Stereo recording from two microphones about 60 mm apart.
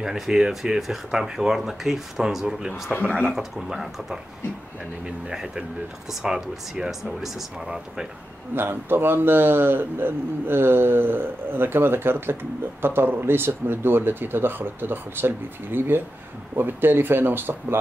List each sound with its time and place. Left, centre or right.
0.0 s speech: centre
8.5 s speech: right